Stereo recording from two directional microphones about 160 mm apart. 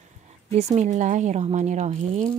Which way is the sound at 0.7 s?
50° right (ahead or behind).